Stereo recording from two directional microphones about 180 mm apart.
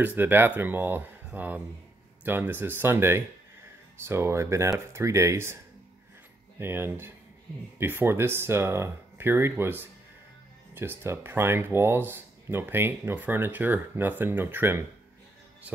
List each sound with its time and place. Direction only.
0.0 s speech: 10° right (ahead or behind)
6.6 s speech: 10° right (ahead or behind)